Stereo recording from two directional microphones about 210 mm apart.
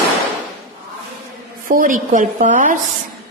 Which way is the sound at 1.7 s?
40° right (ahead or behind).